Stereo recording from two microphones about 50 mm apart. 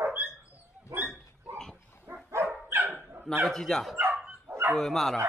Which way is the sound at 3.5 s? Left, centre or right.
Centre.